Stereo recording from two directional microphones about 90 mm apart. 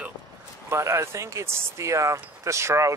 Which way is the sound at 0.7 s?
30° right (ahead or behind).